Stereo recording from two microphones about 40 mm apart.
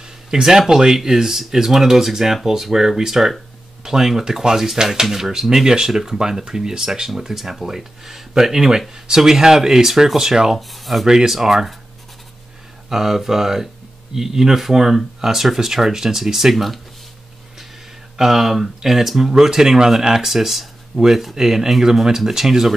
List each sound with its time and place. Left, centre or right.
0.3 s speech: centre
10.7 s speech: centre
11.1 s speech: centre
12.9 s speech: centre
18.1 s speech: centre